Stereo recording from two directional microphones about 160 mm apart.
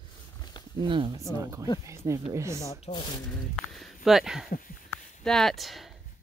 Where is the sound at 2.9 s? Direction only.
30° left (ahead or behind).